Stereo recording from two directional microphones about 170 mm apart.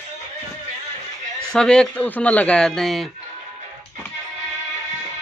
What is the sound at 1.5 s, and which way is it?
Speech, 5° left (ahead or behind).